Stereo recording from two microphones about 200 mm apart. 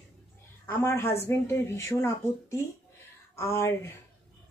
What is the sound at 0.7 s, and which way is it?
Speech, 10° left (ahead or behind).